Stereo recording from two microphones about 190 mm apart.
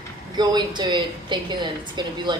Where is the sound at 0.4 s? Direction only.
20° right (ahead or behind).